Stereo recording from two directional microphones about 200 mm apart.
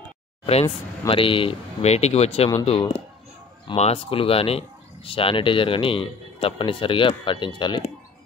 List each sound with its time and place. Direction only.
0.5 s speech: 30° left (ahead or behind)